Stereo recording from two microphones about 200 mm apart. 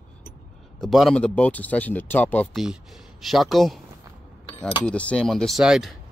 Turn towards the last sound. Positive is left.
turn(degrees=0)  # may be behind; listen again after turning